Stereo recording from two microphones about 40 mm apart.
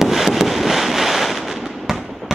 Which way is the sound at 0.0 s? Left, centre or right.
Centre.